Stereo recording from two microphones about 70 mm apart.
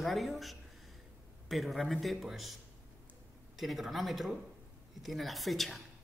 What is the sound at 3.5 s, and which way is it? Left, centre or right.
A woman's voice, centre.